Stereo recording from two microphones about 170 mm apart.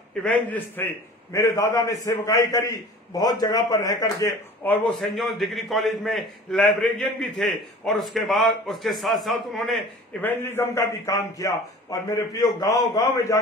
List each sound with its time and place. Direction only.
0.2 s a man's voice: 10° left (ahead or behind)
5.0 s a man's voice: centre (ahead or behind)
10.2 s a man's voice: 15° left (ahead or behind)